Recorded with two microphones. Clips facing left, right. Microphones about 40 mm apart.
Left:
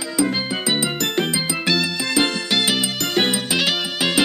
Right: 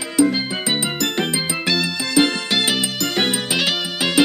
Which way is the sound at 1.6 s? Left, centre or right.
Centre.